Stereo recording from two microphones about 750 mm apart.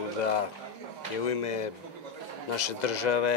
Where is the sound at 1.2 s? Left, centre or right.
Left.